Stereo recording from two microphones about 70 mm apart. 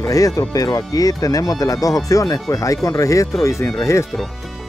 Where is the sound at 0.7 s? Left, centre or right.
Left.